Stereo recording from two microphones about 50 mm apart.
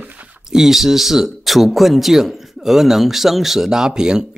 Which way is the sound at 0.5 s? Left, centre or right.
Centre.